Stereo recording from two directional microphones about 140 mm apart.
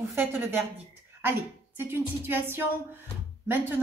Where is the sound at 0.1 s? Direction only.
15° right (ahead or behind).